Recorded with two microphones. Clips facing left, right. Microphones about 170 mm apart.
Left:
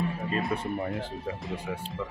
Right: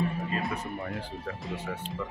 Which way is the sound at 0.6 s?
20° left (ahead or behind).